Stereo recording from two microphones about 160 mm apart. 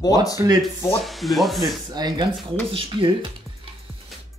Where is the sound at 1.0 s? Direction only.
Centre (ahead or behind).